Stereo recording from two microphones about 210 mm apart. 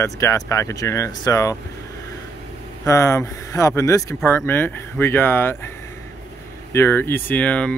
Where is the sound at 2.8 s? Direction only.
15° left (ahead or behind).